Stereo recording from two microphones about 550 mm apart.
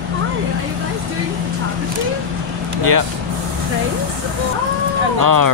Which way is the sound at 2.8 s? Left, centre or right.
Right.